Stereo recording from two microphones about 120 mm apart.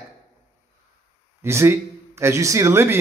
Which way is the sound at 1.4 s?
20° right (ahead or behind).